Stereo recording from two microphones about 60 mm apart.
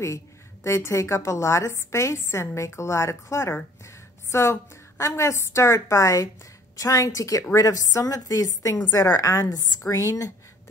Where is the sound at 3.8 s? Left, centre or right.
Left.